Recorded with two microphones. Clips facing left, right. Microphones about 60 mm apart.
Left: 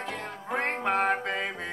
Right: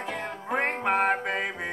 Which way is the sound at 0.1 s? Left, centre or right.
Centre.